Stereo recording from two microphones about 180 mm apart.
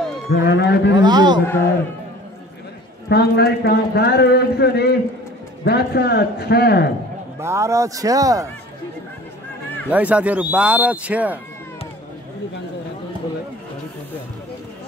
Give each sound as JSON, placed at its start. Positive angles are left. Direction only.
{"t": 0.3, "sound": "a man's voice", "side_deg": 65}
{"t": 0.9, "sound": "a man's voice", "side_deg": -25}
{"t": 3.1, "sound": "a man's voice", "side_deg": 65}
{"t": 7.3, "sound": "speech", "side_deg": -15}
{"t": 9.8, "sound": "speech", "side_deg": -5}